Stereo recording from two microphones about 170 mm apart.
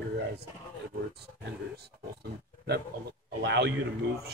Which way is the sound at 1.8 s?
70° right (ahead or behind).